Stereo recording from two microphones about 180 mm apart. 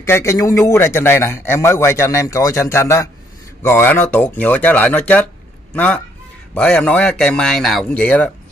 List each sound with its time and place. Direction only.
0.0 s a man's voice: 15° left (ahead or behind)